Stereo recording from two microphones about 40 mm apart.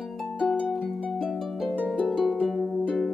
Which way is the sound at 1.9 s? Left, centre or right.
Left.